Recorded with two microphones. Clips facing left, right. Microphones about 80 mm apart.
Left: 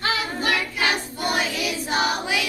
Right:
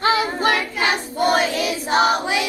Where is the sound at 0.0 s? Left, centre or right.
Right.